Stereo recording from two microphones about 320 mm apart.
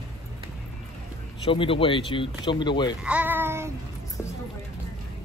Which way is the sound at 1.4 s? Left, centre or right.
Centre.